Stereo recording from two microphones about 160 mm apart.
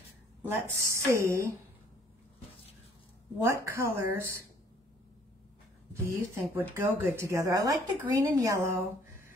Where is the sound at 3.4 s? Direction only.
15° right (ahead or behind).